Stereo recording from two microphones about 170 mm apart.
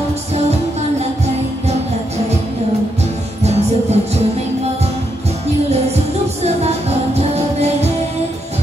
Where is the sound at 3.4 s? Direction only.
40° right (ahead or behind).